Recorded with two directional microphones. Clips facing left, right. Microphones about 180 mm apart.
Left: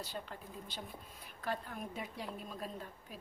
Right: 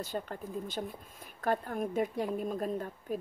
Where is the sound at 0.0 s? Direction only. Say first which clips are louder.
Right 8 dB; 50° right (ahead or behind).